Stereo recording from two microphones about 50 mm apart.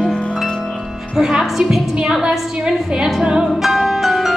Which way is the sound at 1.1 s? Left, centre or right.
Centre.